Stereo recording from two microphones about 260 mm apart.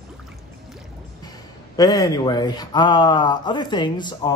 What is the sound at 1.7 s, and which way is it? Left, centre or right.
Speech, centre.